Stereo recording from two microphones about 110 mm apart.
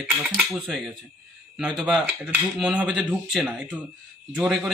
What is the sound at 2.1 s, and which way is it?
Speech, 15° right (ahead or behind).